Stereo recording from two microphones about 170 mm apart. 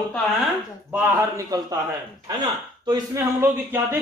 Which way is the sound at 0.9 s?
10° right (ahead or behind).